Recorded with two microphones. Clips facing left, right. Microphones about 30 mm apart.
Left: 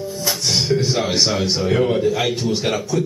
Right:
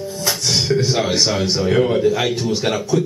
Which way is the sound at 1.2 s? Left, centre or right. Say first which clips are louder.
Right 1 dB; centre.